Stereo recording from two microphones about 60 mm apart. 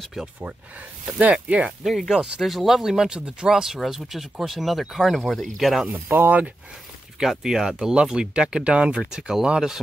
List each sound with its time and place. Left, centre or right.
1.3 s speech: right
1.9 s speech: centre
5.9 s speech: right
7.2 s speech: centre